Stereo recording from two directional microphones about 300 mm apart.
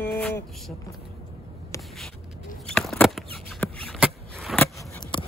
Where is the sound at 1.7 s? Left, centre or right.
Centre.